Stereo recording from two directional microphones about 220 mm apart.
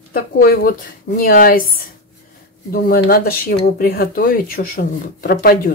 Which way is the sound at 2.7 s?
45° left (ahead or behind).